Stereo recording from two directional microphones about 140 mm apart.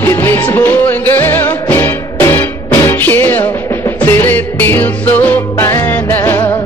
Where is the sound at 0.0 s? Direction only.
15° left (ahead or behind).